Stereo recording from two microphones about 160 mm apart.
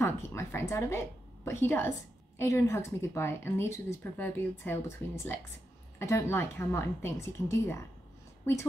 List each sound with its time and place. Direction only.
0.0 s a woman's voice: 15° left (ahead or behind)